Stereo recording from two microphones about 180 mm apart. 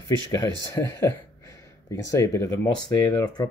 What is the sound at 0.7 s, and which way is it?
Speech, 15° left (ahead or behind).